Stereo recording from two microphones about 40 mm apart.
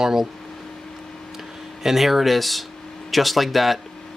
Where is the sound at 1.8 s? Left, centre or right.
Centre.